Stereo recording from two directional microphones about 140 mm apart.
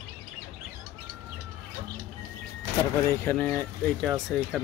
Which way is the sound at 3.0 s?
15° left (ahead or behind).